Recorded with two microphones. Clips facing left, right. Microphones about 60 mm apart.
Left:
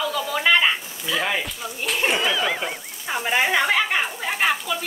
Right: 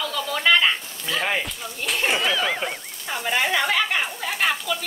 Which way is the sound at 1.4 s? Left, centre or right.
Centre.